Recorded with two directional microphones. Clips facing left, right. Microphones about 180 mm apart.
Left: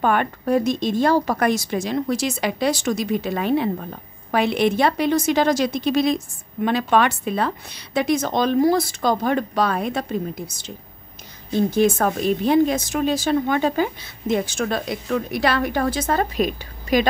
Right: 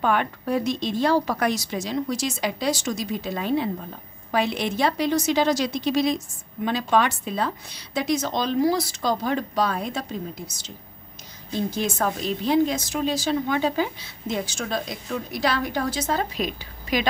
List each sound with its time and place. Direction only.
0.0 s a woman's voice: 50° left (ahead or behind)
11.7 s a woman's voice: 55° left (ahead or behind)